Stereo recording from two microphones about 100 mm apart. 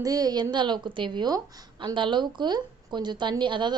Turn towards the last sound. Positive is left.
turn(degrees=-50)  # may be behind; listen again after turning